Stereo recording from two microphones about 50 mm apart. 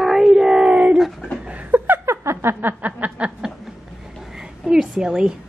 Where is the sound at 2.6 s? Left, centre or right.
Right.